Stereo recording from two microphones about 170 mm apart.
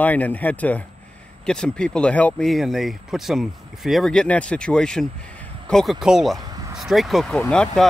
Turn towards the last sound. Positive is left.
turn(degrees=5)  # may be behind; listen again after turning